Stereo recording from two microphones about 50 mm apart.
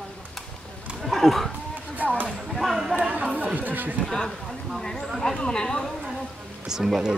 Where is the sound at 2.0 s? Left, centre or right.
Right.